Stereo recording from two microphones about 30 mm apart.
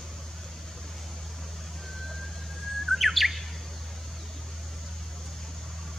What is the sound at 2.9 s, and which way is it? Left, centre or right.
Chirp, centre.